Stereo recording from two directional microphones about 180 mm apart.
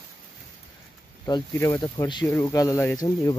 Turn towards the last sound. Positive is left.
turn(degrees=20)  # may be behind; listen again after turning